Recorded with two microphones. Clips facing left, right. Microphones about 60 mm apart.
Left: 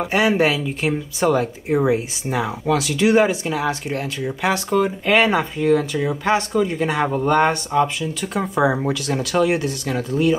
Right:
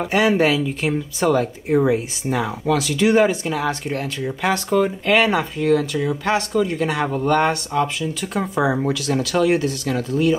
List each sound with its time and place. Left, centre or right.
0.4 s speech: centre